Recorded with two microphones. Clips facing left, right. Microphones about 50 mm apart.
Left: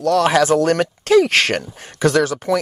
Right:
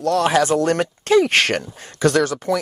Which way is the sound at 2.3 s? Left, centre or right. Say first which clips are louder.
Left 2 dB; left.